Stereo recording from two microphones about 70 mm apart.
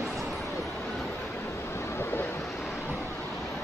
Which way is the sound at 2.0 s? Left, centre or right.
Left.